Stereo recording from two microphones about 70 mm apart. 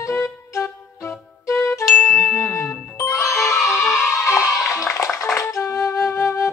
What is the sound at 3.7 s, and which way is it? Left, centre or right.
Music, left.